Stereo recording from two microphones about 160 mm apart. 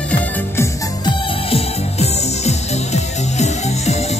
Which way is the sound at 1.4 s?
40° left (ahead or behind).